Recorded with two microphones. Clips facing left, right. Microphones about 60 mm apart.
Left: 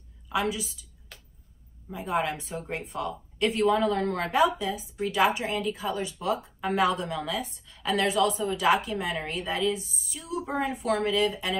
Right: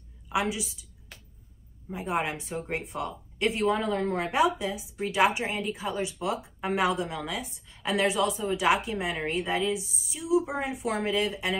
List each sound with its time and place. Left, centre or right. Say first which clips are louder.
0.3 s a woman's voice: even; centre
1.9 s speech: left 1 dB; right